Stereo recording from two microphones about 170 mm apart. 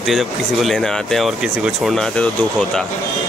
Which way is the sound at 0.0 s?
Centre (ahead or behind).